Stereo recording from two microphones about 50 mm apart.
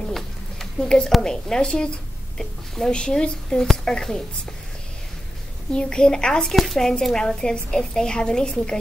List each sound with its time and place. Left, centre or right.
0.1 s a sound: centre
1.2 s a woman's voice: centre
5.7 s a woman's voice: centre
6.5 s a woman's voice: centre